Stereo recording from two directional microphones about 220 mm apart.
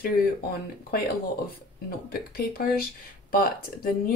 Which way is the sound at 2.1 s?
45° left (ahead or behind).